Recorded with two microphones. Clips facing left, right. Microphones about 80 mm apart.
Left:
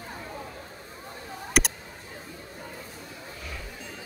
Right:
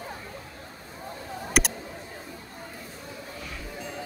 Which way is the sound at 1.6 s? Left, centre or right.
Centre.